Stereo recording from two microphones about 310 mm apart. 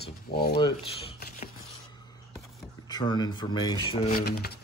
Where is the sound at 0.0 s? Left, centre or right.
Left.